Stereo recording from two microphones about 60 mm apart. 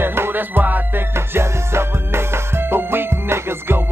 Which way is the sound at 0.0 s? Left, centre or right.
Right.